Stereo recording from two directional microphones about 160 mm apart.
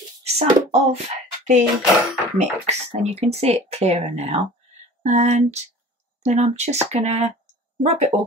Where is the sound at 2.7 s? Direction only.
40° right (ahead or behind).